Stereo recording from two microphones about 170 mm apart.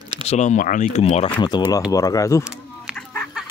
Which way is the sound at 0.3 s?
45° left (ahead or behind).